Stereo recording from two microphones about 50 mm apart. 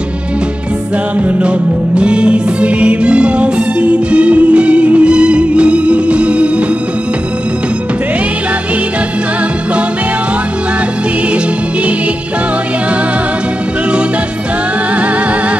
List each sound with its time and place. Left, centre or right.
2.0 s music: right